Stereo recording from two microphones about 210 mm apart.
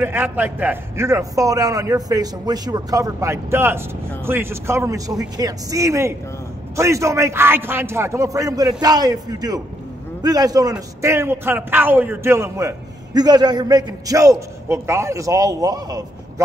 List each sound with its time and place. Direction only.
0.0 s a man's voice: 10° right (ahead or behind)